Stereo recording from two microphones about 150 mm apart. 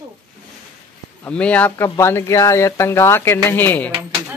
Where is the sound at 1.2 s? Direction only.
10° left (ahead or behind).